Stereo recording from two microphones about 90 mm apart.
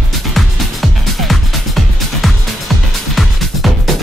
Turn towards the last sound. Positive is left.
turn(degrees=0)  # may be behind; listen again after turning